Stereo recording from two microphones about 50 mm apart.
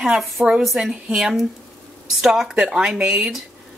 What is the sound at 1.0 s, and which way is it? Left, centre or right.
Speech, right.